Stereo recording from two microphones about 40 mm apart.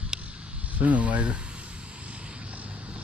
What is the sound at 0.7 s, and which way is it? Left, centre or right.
Speech, right.